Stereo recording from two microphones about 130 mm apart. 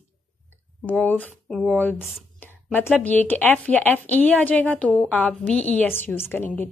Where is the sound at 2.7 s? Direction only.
15° left (ahead or behind).